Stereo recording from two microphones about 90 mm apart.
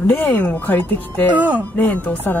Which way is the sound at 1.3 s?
20° right (ahead or behind).